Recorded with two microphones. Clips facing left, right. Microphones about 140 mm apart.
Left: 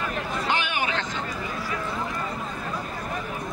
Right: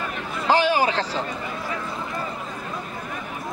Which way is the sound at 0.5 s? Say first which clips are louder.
Right 10 dB; 35° right (ahead or behind).